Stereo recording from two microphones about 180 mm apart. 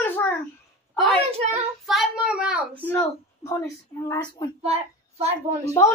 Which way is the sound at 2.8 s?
10° left (ahead or behind).